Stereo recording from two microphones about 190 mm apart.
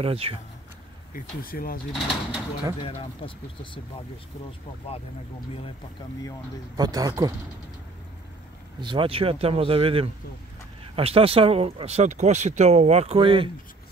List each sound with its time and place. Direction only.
0.0 s speech: 30° right (ahead or behind)
1.1 s speech: 50° left (ahead or behind)
1.9 s speech: centre (ahead or behind)
2.8 s speech: 30° left (ahead or behind)
6.8 s speech: 20° right (ahead or behind)
8.8 s speech: 30° right (ahead or behind)